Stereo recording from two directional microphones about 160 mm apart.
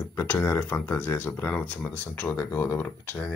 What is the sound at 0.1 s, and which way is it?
Speech, 15° left (ahead or behind).